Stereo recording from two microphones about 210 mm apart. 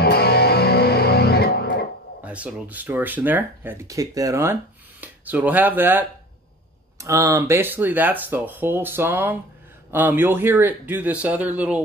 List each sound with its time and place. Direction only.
0.0 s music: 50° left (ahead or behind)
2.2 s speech: 5° right (ahead or behind)